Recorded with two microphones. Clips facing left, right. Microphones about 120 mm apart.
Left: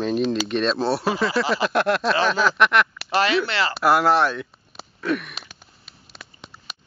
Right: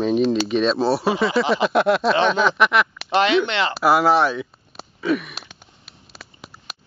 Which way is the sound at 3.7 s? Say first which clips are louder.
Right 1 dB; centre (ahead or behind).